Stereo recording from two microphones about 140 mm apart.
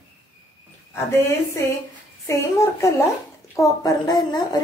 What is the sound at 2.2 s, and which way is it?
A woman's voice, 20° left (ahead or behind).